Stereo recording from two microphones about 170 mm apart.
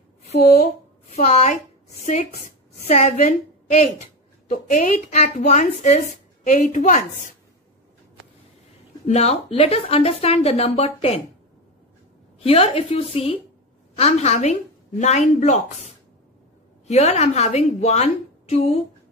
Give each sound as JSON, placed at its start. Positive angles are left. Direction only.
{"t": 1.1, "sound": "a woman's voice", "side_deg": 40}
{"t": 9.0, "sound": "a woman's voice", "side_deg": 40}
{"t": 12.4, "sound": "a woman's voice", "side_deg": 35}